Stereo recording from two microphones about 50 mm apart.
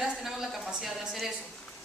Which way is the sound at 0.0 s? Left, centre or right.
Centre.